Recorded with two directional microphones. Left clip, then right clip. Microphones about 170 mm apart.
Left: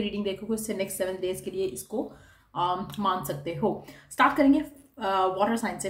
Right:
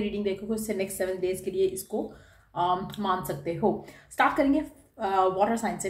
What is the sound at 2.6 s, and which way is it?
A woman's voice, 30° left (ahead or behind).